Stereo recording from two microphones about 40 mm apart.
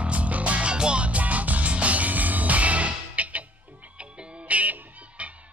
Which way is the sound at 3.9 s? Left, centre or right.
Right.